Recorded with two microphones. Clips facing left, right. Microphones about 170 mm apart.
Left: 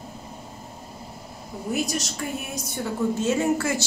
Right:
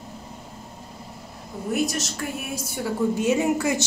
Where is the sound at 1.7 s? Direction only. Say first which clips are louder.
Right 2 dB; centre (ahead or behind).